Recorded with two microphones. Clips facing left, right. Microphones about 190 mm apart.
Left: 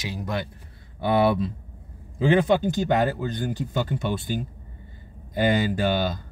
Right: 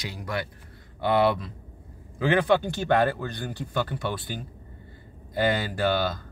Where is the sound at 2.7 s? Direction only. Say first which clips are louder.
Left 1 dB; 20° left (ahead or behind).